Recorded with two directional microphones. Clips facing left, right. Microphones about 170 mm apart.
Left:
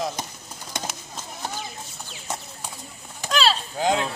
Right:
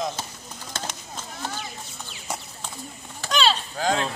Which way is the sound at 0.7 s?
15° left (ahead or behind).